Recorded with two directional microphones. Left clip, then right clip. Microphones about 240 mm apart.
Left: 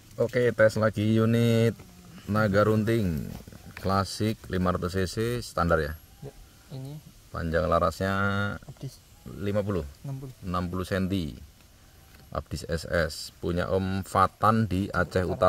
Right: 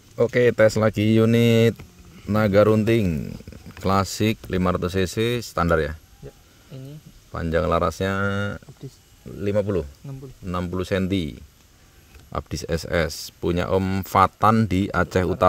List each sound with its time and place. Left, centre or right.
0.2 s speech: right
7.3 s speech: right